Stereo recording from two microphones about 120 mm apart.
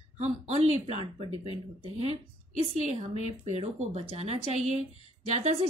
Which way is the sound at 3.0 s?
70° right (ahead or behind).